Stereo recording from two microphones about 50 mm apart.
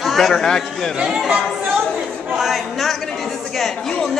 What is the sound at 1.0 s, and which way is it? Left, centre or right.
Speech, centre.